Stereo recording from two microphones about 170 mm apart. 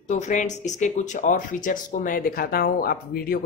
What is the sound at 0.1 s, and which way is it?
Speech, 45° left (ahead or behind).